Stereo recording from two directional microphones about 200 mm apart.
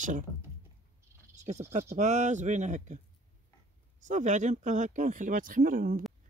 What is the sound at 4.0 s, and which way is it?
Speech, 40° right (ahead or behind).